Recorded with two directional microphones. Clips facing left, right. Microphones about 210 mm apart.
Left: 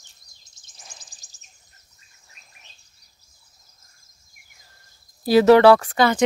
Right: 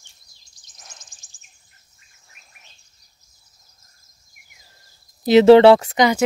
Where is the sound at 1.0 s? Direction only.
35° left (ahead or behind).